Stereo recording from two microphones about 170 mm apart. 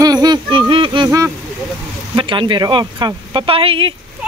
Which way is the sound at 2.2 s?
30° right (ahead or behind).